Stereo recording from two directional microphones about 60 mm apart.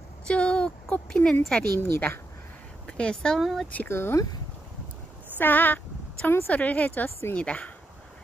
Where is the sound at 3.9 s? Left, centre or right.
Left.